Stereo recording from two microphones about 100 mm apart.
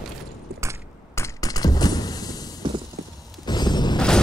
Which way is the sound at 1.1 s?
35° left (ahead or behind).